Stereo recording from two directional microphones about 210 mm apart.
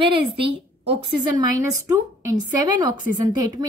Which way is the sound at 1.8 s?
15° right (ahead or behind).